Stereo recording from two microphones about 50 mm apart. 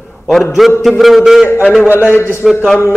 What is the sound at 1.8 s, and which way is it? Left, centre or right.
Speech, right.